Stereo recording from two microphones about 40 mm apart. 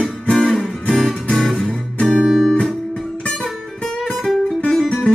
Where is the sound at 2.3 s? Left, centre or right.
Centre.